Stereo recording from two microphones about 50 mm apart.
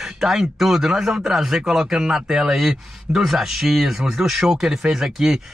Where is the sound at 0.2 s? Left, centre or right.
Centre.